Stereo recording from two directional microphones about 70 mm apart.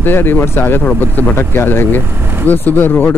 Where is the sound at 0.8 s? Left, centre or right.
Left.